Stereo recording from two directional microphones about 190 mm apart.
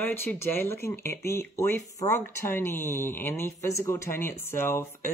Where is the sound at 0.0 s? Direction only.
10° left (ahead or behind).